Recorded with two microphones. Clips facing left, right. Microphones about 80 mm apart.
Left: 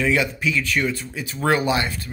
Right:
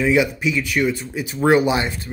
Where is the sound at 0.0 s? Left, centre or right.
Centre.